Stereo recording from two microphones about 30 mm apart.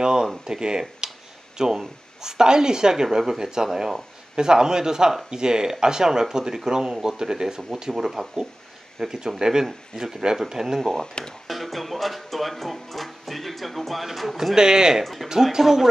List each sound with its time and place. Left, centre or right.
0.0 s speech: right
10.8 s speech: centre
14.5 s speech: right
15.6 s speech: centre